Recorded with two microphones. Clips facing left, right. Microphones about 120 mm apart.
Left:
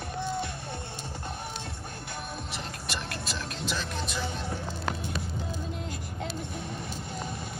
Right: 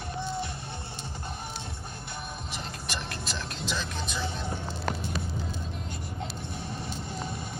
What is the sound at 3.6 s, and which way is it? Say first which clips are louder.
Vehicle: even; 5° left (ahead or behind).